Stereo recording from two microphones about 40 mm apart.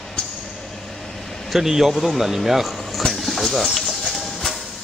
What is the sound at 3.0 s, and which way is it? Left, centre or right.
Train, centre.